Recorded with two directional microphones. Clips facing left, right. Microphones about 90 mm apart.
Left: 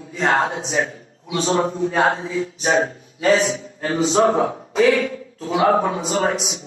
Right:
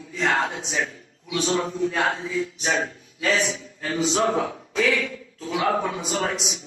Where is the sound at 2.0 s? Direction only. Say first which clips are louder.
Left 5 dB; 30° left (ahead or behind).